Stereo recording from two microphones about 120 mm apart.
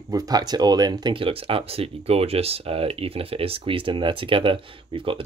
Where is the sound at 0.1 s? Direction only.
30° right (ahead or behind).